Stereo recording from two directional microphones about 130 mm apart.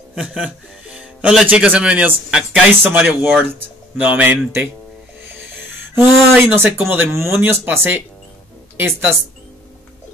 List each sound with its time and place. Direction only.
0.1 s speech: 5° right (ahead or behind)